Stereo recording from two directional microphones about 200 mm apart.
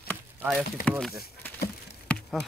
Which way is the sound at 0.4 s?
5° right (ahead or behind).